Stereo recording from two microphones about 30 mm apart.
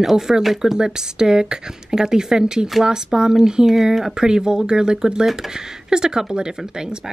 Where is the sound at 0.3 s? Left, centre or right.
Centre.